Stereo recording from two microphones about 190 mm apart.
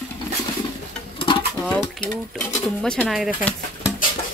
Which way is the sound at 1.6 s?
5° left (ahead or behind).